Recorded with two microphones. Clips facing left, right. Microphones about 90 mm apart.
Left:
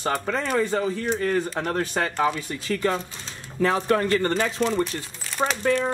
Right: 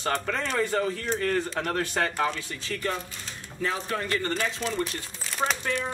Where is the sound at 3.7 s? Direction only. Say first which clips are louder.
Left 9 dB; 55° left (ahead or behind).